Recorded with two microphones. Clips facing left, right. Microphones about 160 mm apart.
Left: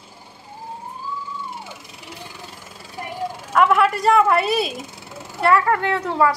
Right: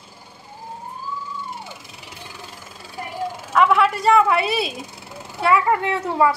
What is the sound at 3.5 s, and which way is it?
A woman's voice, 5° left (ahead or behind).